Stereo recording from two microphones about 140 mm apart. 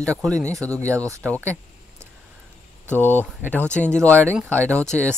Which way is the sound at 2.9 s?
15° left (ahead or behind).